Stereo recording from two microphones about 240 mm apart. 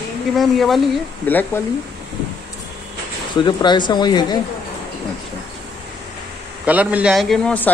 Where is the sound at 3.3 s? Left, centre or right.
Centre.